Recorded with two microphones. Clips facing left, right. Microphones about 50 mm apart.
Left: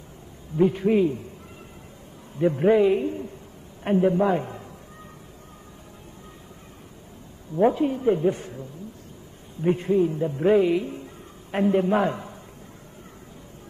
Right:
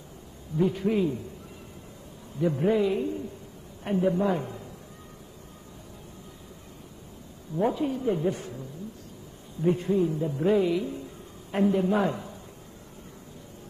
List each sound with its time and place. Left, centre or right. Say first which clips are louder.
0.6 s speech: left 5 dB; left
2.3 s a man's voice: left 5 dB; left
7.6 s a man's voice: left 6 dB; left